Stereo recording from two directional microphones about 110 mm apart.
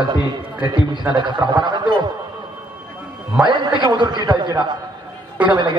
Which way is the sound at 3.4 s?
45° right (ahead or behind).